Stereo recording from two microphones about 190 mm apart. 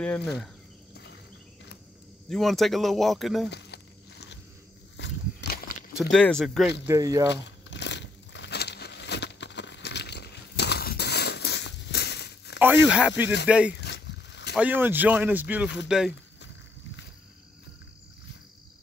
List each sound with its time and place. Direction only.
0.0 s cricket: 5° left (ahead or behind)
2.2 s speech: centre (ahead or behind)
3.4 s a sound: 60° left (ahead or behind)
6.1 s speech: 5° left (ahead or behind)
6.9 s speech: 20° right (ahead or behind)
7.2 s crumpling: 65° left (ahead or behind)
12.5 s speech: 10° right (ahead or behind)
13.7 s a sound: 65° left (ahead or behind)
14.5 s speech: 10° right (ahead or behind)